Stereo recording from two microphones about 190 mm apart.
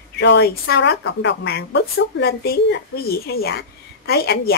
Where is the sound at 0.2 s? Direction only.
65° left (ahead or behind).